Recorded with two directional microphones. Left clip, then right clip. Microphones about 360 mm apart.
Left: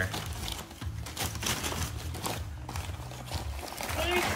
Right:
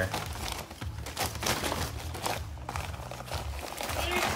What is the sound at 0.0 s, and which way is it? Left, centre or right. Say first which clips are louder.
Music: right 2 dB; centre.